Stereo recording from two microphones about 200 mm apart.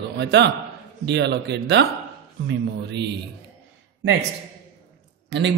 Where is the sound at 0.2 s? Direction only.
60° right (ahead or behind).